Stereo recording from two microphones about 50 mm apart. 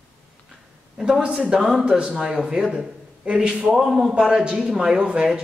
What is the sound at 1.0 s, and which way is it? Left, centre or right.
A man's voice, centre.